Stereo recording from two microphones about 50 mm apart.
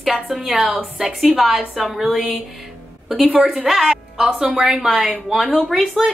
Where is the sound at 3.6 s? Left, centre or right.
Centre.